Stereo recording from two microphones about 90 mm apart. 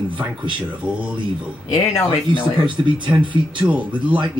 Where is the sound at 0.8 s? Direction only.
15° right (ahead or behind).